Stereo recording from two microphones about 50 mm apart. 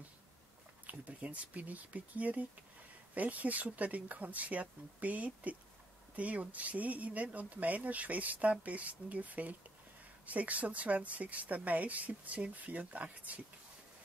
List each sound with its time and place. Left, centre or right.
0.8 s speech: right